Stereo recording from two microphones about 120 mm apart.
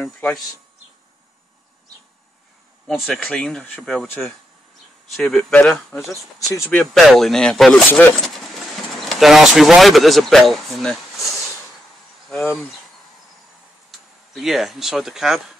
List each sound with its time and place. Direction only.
0.0 s speech: 5° left (ahead or behind)
2.9 s speech: 5° left (ahead or behind)
5.1 s speech: 5° left (ahead or behind)
6.0 s speech: 25° left (ahead or behind)
6.7 s speech: 5° left (ahead or behind)
9.0 s speech: centre (ahead or behind)
13.9 s a sound: centre (ahead or behind)
14.3 s speech: centre (ahead or behind)